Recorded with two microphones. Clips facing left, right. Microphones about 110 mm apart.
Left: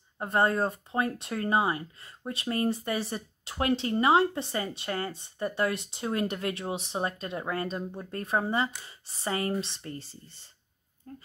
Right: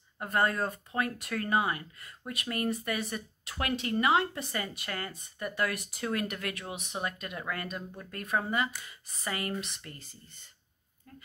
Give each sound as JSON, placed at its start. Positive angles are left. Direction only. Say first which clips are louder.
{"t": 0.2, "sound": "speech", "louder": "left 3 dB", "side_deg": 25}